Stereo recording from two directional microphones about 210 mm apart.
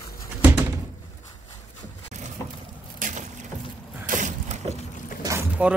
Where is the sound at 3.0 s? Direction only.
35° right (ahead or behind).